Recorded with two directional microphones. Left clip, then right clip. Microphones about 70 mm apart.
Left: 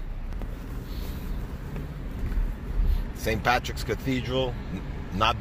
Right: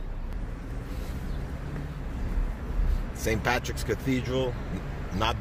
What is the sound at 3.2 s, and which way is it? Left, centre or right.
Speech, right.